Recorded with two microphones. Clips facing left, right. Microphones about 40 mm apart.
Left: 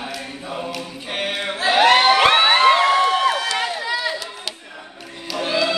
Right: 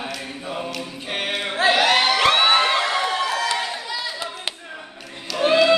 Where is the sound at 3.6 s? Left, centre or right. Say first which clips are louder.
Left 4 dB; left.